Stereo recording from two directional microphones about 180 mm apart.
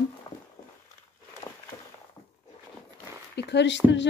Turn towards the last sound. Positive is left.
turn(degrees=85)